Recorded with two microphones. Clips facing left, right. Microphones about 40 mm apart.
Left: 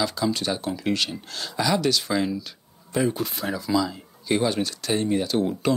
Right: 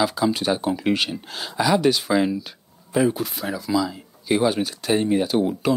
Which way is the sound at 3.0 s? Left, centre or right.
Centre.